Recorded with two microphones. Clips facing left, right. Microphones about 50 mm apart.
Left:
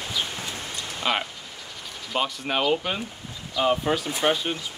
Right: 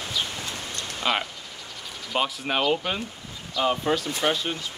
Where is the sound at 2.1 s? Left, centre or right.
Centre.